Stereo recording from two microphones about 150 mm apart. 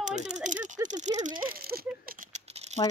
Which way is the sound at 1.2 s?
65° right (ahead or behind).